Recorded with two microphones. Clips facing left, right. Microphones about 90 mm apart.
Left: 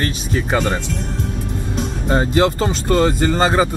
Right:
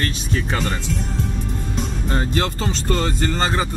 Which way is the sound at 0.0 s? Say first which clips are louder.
Left 3 dB; 20° left (ahead or behind).